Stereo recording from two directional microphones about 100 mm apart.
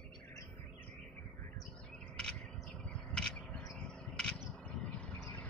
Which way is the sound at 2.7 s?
10° left (ahead or behind).